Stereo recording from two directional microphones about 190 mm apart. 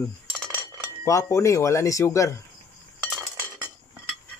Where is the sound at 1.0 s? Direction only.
15° left (ahead or behind).